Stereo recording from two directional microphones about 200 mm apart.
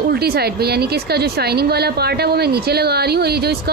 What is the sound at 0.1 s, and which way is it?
A woman's voice, 50° right (ahead or behind).